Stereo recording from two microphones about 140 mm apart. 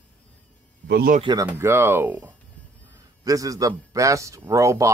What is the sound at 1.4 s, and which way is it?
Speech, 15° right (ahead or behind).